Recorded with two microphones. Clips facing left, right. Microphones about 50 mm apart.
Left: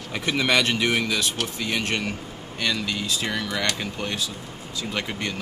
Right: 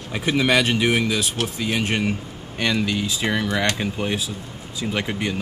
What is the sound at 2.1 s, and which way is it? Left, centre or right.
Speech, right.